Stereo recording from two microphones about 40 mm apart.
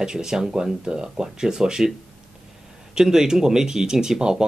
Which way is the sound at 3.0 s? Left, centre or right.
Centre.